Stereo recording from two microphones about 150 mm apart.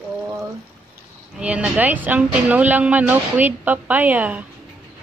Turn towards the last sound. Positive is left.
turn(degrees=-10)  # may be behind; listen again after turning